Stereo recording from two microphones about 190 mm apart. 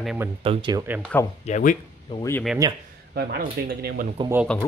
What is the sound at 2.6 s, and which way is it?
Speech, 20° right (ahead or behind).